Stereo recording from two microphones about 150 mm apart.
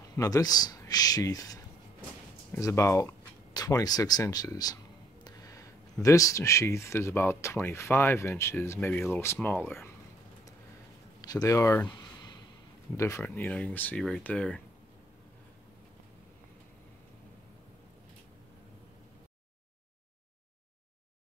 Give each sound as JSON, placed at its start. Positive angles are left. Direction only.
{"t": 0.1, "sound": "speech", "side_deg": 25}
{"t": 5.2, "sound": "a sound", "side_deg": 20}
{"t": 6.0, "sound": "speech", "side_deg": 20}
{"t": 11.1, "sound": "speech", "side_deg": 25}
{"t": 12.9, "sound": "speech", "side_deg": 20}